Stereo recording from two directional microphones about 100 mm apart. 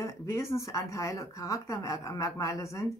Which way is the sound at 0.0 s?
30° left (ahead or behind).